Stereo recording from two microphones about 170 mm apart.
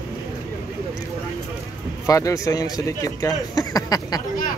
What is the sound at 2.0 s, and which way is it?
Speech, 20° left (ahead or behind).